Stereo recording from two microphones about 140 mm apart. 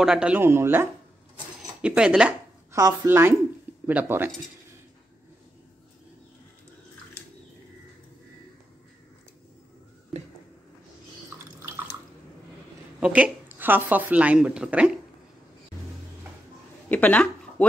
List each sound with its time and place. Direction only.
0.0 s a woman's voice: 5° right (ahead or behind)
2.7 s a woman's voice: 25° right (ahead or behind)
10.1 s a sound: 50° right (ahead or behind)
11.6 s drip: 15° right (ahead or behind)
13.0 s a woman's voice: 10° right (ahead or behind)
16.9 s speech: 10° left (ahead or behind)